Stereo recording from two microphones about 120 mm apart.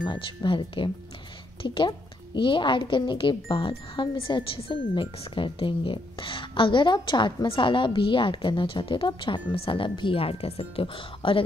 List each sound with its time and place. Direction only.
0.0 s a woman's voice: 40° left (ahead or behind)